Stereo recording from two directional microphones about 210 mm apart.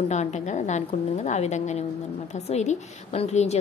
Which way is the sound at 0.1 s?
35° left (ahead or behind).